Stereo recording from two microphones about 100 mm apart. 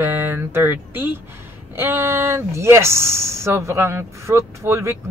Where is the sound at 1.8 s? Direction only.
25° right (ahead or behind).